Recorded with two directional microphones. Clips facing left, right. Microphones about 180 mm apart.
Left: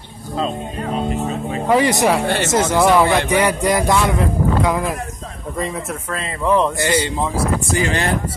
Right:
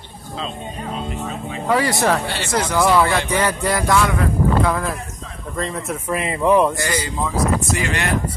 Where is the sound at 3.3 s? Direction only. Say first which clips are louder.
Left 3 dB; 15° left (ahead or behind).